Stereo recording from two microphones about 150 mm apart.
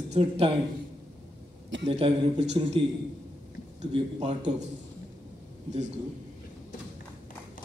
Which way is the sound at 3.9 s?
40° right (ahead or behind).